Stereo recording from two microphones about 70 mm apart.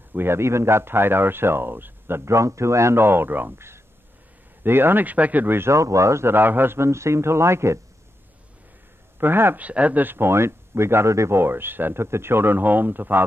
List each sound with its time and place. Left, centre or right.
0.1 s a man's voice: right
5.7 s speech: right
6.3 s a man's voice: right
9.2 s a man's voice: right
9.7 s a man's voice: right